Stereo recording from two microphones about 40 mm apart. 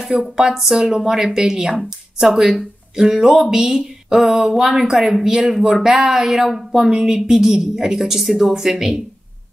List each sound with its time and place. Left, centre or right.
0.2 s speech: centre
6.9 s speech: right